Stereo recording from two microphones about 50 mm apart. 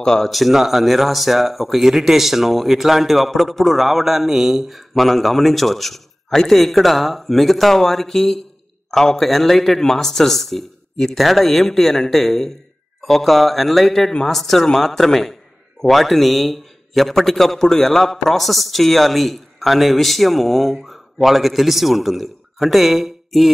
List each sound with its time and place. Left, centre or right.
0.0 s speech: centre
0.3 s speech: centre